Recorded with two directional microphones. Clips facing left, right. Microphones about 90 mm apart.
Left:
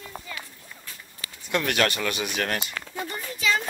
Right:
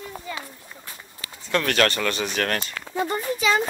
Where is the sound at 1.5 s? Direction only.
15° left (ahead or behind).